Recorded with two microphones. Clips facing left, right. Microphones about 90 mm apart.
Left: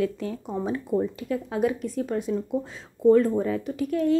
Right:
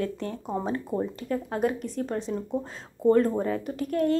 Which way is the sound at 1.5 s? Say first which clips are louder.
Left 3 dB; centre (ahead or behind).